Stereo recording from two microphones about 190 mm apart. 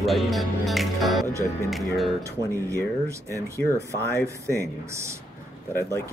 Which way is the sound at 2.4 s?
15° right (ahead or behind).